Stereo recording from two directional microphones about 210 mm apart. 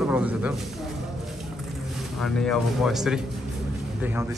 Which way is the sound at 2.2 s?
Centre (ahead or behind).